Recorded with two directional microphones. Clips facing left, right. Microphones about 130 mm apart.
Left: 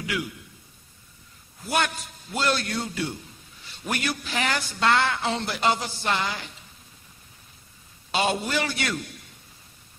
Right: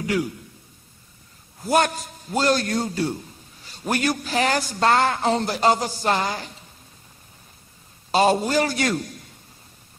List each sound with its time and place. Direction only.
0.0 s a man's voice: 40° right (ahead or behind)
1.6 s a man's voice: 40° right (ahead or behind)
8.1 s a man's voice: 40° right (ahead or behind)